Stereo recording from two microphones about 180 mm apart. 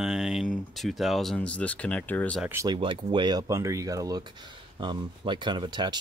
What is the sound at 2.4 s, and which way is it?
Speech, 10° right (ahead or behind).